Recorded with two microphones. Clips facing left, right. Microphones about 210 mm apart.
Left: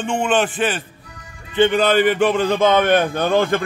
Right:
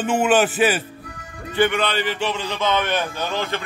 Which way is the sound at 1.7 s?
45° left (ahead or behind).